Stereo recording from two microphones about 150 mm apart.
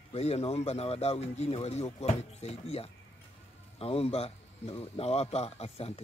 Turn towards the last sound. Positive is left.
turn(degrees=40)  # may be behind; listen again after turning